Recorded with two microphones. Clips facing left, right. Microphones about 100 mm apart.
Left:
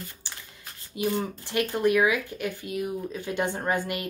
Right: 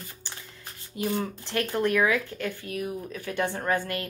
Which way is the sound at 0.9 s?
15° left (ahead or behind).